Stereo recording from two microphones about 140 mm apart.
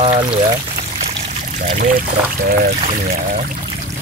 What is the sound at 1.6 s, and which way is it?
Speech, 85° right.